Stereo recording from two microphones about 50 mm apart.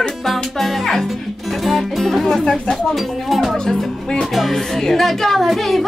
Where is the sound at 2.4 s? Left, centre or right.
Centre.